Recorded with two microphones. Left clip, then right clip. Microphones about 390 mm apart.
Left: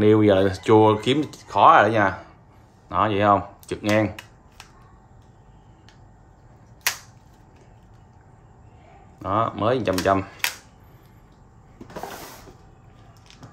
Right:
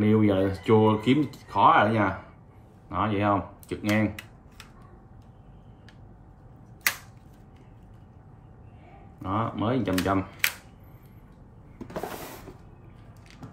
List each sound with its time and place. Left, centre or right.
0.0 s speech: left
9.2 s speech: left